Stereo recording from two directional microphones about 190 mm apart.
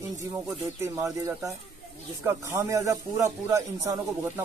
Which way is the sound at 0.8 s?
15° right (ahead or behind).